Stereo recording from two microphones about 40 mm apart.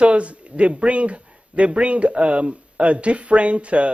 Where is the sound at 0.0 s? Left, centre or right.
Right.